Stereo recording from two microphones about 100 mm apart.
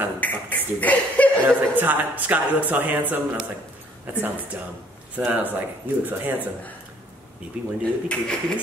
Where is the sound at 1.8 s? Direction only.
15° right (ahead or behind).